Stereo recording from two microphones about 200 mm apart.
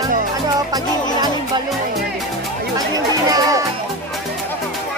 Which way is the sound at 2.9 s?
15° right (ahead or behind).